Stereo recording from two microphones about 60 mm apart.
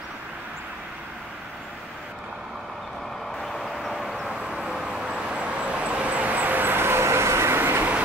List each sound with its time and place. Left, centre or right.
3.3 s vehicle: centre; by 7.8 s right